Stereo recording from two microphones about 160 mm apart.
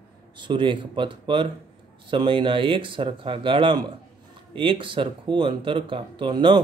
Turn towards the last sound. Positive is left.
turn(degrees=-30)  # may be behind; listen again after turning